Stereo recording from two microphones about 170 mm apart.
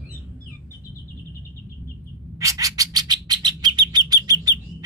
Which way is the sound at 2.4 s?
20° right (ahead or behind).